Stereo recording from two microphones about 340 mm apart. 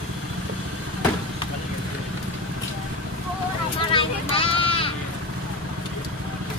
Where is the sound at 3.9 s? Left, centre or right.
Centre.